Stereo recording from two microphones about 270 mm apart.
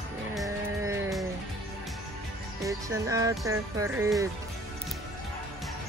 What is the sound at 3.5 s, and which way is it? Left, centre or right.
Speech, centre.